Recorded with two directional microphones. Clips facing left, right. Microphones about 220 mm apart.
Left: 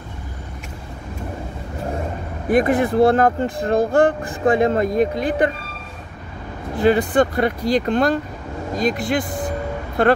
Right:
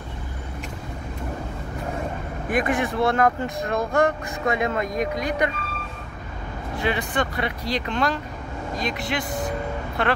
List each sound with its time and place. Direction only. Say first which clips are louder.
2.4 s speech: left 7 dB; 35° left (ahead or behind)
6.8 s speech: left 10 dB; 35° left (ahead or behind)